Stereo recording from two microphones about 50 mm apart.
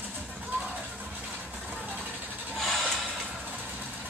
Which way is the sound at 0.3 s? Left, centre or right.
Right.